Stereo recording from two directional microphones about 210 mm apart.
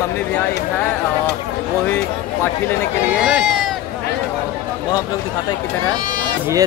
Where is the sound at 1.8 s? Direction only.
10° left (ahead or behind).